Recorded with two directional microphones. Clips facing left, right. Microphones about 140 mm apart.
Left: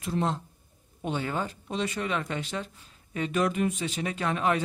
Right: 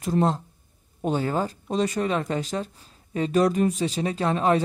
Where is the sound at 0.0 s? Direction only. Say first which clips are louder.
Right 6 dB; 40° right (ahead or behind).